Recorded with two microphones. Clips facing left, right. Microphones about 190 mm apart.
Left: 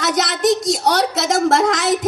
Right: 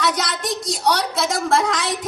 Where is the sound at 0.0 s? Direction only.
45° left (ahead or behind).